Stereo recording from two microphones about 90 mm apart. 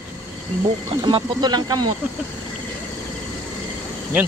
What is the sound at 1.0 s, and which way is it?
Speech, 55° right (ahead or behind).